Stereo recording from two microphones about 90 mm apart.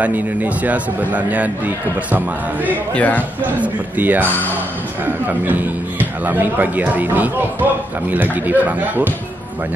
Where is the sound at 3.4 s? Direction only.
20° right (ahead or behind).